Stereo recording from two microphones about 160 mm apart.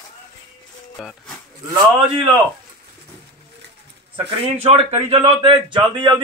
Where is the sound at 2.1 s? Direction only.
30° right (ahead or behind).